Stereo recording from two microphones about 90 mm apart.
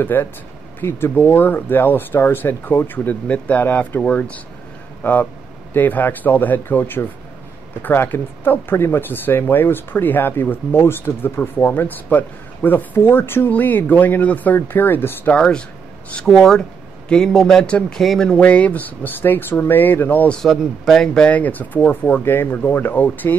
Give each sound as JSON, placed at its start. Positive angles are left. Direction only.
{"t": 0.0, "sound": "speech", "side_deg": 20}
{"t": 15.3, "sound": "speech", "side_deg": 10}
{"t": 20.3, "sound": "speech", "side_deg": 0}